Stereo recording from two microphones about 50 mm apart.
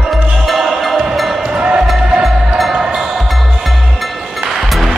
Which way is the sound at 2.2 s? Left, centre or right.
Centre.